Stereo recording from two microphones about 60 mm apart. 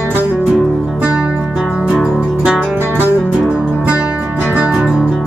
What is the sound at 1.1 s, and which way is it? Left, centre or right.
Music, centre.